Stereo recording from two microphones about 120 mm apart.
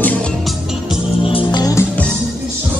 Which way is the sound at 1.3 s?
35° left (ahead or behind).